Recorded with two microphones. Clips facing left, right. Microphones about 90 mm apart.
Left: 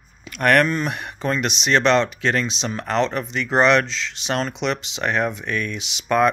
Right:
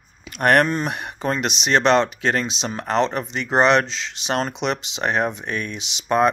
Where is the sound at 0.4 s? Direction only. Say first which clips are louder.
Even; 35° right (ahead or behind).